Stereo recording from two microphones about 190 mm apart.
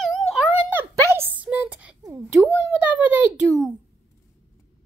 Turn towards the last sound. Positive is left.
turn(degrees=-10)  # may be behind; listen again after turning